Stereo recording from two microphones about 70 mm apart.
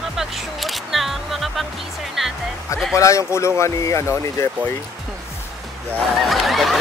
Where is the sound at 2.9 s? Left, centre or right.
Left.